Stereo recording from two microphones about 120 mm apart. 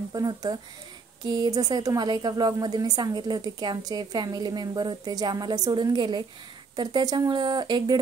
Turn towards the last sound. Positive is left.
turn(degrees=-40)  # may be behind; listen again after turning